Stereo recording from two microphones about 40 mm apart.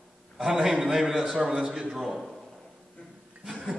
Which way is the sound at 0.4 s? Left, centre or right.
Centre.